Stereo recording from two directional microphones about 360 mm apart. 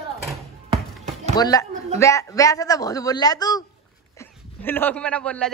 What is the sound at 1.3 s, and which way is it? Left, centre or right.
A man's voice, centre.